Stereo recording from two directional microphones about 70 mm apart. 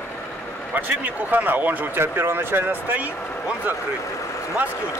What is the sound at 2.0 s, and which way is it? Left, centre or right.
Speech, right.